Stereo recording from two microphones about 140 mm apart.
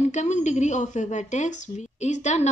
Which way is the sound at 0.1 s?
55° left (ahead or behind).